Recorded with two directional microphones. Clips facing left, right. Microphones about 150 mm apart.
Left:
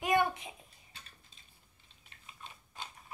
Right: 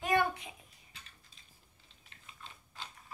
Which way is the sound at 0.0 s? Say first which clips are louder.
Left 1 dB; 20° left (ahead or behind).